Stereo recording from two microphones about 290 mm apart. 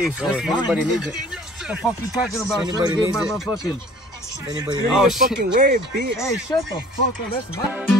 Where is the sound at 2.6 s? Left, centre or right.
Centre.